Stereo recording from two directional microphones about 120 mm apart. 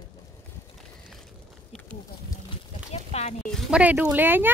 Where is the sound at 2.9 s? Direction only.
65° left (ahead or behind).